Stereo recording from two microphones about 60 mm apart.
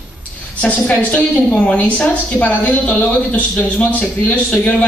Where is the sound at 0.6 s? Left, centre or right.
Left.